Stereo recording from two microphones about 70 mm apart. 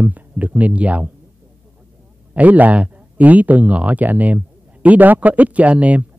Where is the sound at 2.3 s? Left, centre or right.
Right.